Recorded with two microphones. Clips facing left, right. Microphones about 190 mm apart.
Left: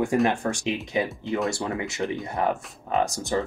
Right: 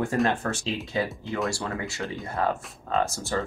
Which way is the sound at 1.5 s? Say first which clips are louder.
Left 3 dB; 20° left (ahead or behind).